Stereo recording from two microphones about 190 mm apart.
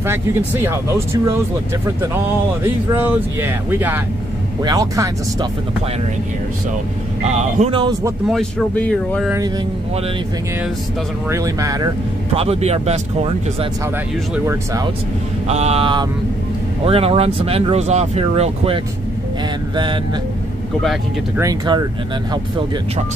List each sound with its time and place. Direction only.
0.0 s speech: 10° right (ahead or behind)
2.6 s speech: 10° right (ahead or behind)
7.2 s speech: 35° right (ahead or behind)
8.3 s speech: 5° left (ahead or behind)
11.2 s speech: 15° right (ahead or behind)
12.4 s speech: 35° right (ahead or behind)
14.3 s speech: 15° right (ahead or behind)
15.4 s speech: 35° right (ahead or behind)
21.4 s speech: 20° right (ahead or behind)